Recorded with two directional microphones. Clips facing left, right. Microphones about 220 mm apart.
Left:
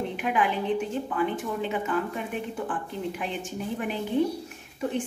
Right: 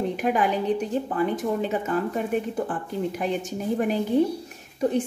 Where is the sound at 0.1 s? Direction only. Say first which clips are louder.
Right 3 dB; 40° right (ahead or behind).